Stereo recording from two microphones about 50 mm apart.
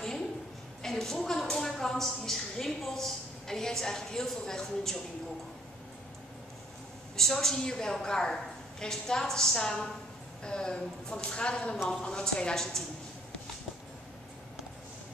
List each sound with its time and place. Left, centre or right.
0.8 s a woman's voice: centre
7.2 s a woman's voice: centre